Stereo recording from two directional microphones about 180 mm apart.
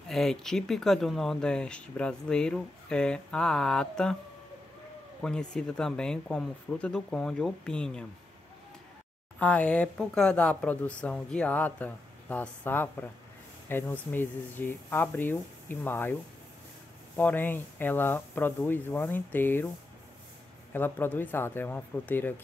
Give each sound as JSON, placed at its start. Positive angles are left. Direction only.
{"t": 0.1, "sound": "speech", "side_deg": 0}
{"t": 5.2, "sound": "speech", "side_deg": 5}
{"t": 9.4, "sound": "speech", "side_deg": 10}
{"t": 17.2, "sound": "speech", "side_deg": 10}
{"t": 20.7, "sound": "speech", "side_deg": 10}